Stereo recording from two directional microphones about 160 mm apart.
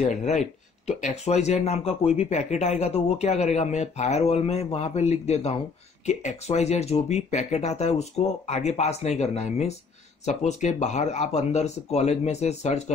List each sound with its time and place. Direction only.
0.1 s speech: 50° left (ahead or behind)